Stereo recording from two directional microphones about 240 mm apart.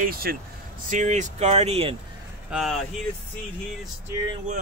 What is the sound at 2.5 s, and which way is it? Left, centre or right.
Speech, centre.